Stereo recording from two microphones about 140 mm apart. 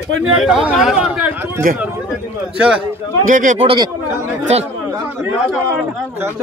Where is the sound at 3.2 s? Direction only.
70° right (ahead or behind).